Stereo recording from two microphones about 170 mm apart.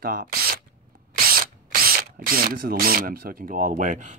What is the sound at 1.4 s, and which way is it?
Speech, 60° right (ahead or behind).